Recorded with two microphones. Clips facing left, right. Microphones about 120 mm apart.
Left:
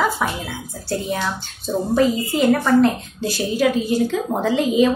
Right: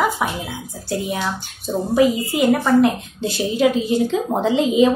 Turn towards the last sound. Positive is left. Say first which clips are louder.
# right 1 dB
turn(degrees=-20)  # may be behind; listen again after turning